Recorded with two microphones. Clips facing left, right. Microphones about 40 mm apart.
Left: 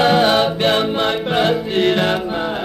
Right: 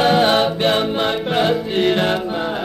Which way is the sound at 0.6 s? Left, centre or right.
Centre.